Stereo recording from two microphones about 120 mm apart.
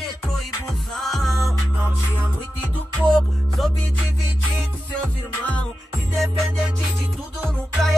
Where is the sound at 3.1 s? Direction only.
5° left (ahead or behind).